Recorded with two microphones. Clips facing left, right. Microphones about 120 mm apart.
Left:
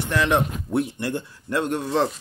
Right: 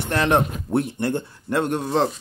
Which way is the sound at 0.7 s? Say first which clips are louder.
Right 3 dB; 30° right (ahead or behind).